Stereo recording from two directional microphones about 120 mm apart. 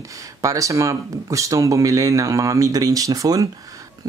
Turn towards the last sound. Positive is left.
turn(degrees=-30)  # may be behind; listen again after turning